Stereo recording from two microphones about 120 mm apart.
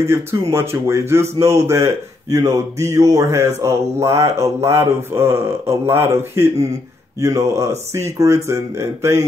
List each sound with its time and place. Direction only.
0.0 s speech: 20° right (ahead or behind)